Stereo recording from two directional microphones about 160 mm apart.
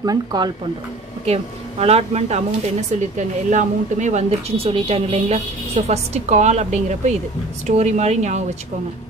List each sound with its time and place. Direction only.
0.0 s speech: 25° right (ahead or behind)
1.2 s speech: 40° right (ahead or behind)